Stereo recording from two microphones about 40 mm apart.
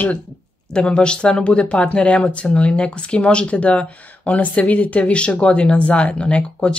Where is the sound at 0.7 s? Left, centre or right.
Left.